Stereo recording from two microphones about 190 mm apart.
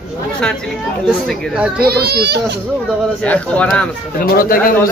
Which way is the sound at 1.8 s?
55° right (ahead or behind).